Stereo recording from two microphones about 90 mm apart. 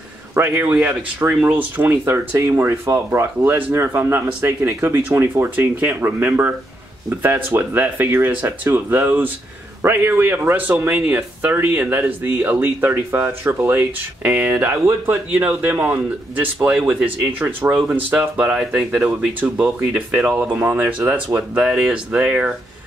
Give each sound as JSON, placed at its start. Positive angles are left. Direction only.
{"t": 0.3, "sound": "speech", "side_deg": -25}
{"t": 17.3, "sound": "speech", "side_deg": -20}